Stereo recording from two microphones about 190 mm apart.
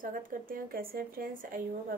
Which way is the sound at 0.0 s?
50° right (ahead or behind).